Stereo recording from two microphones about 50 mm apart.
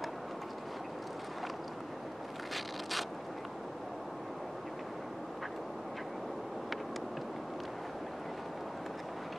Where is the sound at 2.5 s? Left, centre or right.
Centre.